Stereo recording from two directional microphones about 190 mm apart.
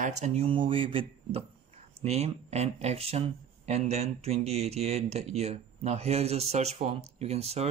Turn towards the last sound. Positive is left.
turn(degrees=-35)  # may be behind; listen again after turning